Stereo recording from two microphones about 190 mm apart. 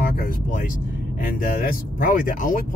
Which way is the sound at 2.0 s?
45° left (ahead or behind).